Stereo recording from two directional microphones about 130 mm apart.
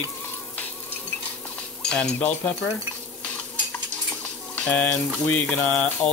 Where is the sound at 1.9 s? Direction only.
10° left (ahead or behind).